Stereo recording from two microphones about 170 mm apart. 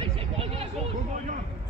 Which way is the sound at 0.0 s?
35° right (ahead or behind).